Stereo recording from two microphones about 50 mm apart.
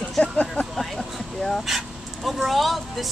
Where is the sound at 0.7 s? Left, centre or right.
Centre.